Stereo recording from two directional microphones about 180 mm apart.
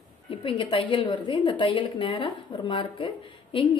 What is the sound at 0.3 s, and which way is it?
A woman's voice, 30° left (ahead or behind).